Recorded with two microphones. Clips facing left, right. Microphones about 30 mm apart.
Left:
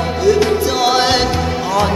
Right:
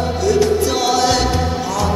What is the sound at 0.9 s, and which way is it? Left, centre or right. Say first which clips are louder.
Music: left 2 dB; left.